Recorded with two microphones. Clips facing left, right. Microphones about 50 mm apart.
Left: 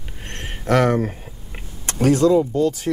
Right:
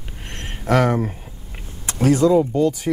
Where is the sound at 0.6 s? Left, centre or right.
Centre.